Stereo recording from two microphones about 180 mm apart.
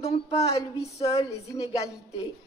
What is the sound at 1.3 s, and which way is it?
Speech, 20° left (ahead or behind).